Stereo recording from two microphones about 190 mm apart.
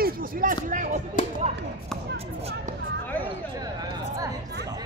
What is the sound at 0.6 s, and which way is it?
Music, 45° right (ahead or behind).